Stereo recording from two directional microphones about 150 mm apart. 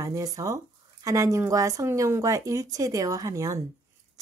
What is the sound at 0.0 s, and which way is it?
A woman's voice, 20° right (ahead or behind).